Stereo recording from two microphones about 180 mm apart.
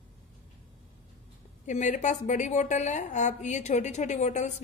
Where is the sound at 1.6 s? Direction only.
45° left (ahead or behind).